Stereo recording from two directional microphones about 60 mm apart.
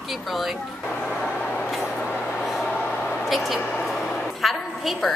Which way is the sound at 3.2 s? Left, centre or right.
Centre.